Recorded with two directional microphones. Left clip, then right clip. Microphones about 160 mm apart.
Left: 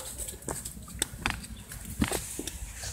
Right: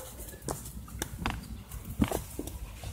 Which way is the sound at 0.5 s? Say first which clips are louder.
Right 1 dB; 40° right (ahead or behind).